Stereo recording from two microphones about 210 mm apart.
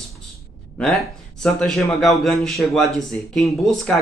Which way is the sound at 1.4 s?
Centre (ahead or behind).